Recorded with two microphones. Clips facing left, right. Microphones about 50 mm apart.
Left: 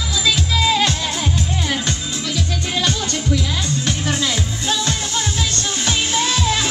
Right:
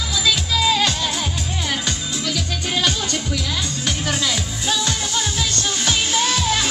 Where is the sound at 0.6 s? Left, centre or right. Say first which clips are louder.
Left 1 dB; centre.